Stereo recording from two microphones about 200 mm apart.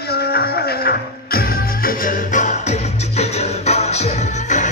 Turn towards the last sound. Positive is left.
turn(degrees=35)  # may be behind; listen again after turning